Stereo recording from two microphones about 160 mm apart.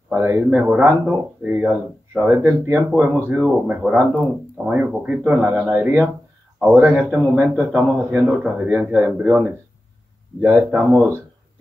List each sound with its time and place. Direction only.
0.1 s speech: 15° right (ahead or behind)
2.2 s speech: 15° right (ahead or behind)